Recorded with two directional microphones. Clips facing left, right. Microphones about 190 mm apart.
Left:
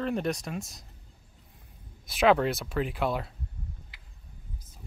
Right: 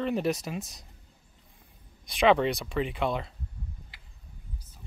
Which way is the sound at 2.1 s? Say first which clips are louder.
Even; 5° left (ahead or behind).